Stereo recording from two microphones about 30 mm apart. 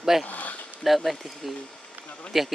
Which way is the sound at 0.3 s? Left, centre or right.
Left.